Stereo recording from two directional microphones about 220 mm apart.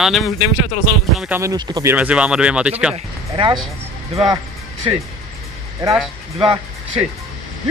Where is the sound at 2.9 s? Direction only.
20° right (ahead or behind).